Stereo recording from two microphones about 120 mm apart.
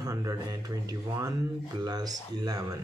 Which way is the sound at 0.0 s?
30° right (ahead or behind).